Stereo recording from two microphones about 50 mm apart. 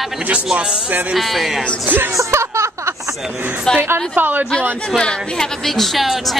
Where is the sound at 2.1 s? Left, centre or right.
Right.